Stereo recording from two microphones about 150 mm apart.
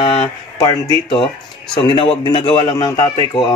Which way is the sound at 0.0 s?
40° left (ahead or behind).